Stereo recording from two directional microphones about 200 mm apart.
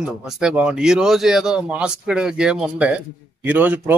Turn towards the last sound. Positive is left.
turn(degrees=-10)  # may be behind; listen again after turning